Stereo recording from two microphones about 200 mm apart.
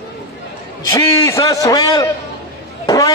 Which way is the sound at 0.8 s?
15° left (ahead or behind).